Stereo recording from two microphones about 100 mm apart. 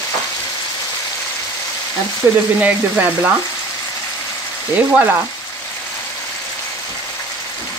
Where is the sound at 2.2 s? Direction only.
20° right (ahead or behind).